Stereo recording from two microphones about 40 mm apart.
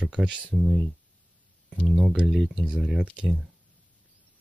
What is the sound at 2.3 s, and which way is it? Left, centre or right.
Speech, centre.